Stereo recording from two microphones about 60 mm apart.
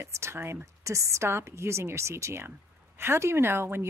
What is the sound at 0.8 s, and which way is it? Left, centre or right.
Speech, right.